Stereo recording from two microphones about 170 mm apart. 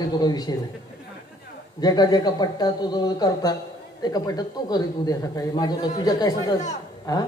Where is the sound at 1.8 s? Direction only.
25° left (ahead or behind).